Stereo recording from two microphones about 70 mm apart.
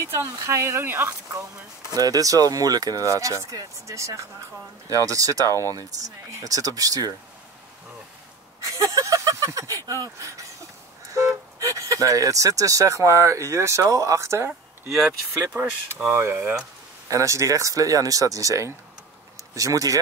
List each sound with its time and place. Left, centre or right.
0.1 s speech: right
0.8 s speech: right
1.9 s speech: right
8.6 s a sound: right
9.8 s speech: right
15.0 s speech: right
17.1 s speech: right